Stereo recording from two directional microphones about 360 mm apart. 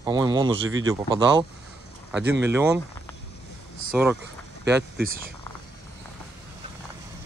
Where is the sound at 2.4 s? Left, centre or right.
Centre.